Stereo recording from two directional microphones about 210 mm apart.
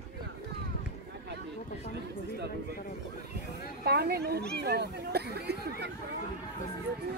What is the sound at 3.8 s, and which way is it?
Speech, 50° right (ahead or behind).